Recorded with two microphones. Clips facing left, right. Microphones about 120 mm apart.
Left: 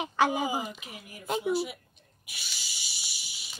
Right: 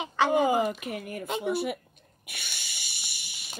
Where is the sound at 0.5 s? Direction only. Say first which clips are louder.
Right 8 dB; 60° right (ahead or behind).